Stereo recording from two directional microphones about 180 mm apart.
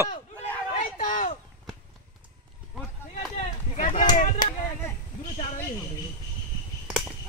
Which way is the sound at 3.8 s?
45° left (ahead or behind).